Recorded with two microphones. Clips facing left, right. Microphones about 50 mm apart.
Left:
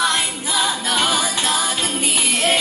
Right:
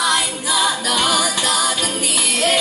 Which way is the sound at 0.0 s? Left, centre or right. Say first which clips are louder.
Right 1 dB; left.